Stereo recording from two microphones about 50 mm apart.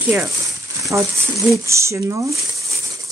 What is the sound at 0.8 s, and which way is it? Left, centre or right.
Speech, right.